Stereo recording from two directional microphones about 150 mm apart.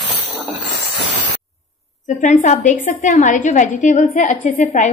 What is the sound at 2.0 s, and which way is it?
A woman's voice, 55° left (ahead or behind).